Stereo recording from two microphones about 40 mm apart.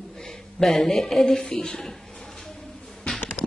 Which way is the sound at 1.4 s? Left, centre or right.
Left.